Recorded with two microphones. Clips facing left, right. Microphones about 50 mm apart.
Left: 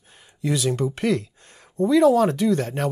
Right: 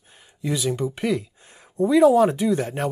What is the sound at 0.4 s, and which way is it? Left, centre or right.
Speech, centre.